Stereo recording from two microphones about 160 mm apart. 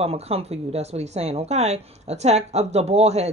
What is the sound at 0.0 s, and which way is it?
Speech, 40° right (ahead or behind).